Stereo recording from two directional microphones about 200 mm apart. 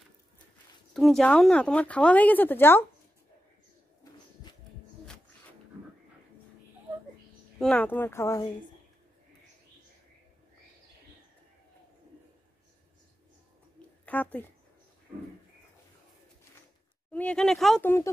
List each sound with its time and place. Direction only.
0.9 s speech: centre (ahead or behind)
4.0 s bird: 20° left (ahead or behind)
7.5 s speech: 5° left (ahead or behind)
14.0 s speech: 10° left (ahead or behind)
17.1 s speech: 5° left (ahead or behind)